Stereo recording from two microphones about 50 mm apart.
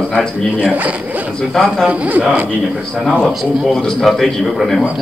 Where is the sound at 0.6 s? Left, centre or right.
Right.